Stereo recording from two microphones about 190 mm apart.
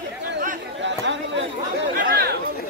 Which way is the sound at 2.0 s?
55° right (ahead or behind).